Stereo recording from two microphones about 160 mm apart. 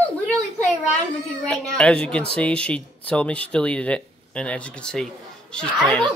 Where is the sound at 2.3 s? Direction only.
5° left (ahead or behind).